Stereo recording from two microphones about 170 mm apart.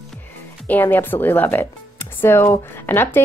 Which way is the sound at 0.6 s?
10° left (ahead or behind).